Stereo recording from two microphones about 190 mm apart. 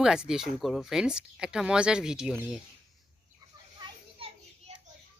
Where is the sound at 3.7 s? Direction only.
30° right (ahead or behind).